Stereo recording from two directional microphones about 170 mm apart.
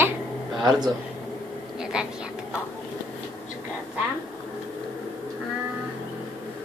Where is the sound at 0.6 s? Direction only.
25° right (ahead or behind).